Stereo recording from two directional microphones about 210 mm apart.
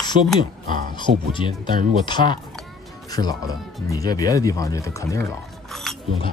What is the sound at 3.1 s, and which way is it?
Speech, 20° left (ahead or behind).